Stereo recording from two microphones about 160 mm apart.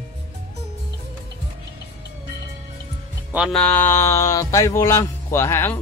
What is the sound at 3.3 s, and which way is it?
Music, 5° right (ahead or behind).